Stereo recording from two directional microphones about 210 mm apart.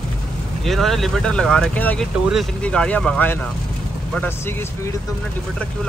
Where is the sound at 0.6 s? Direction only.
Centre (ahead or behind).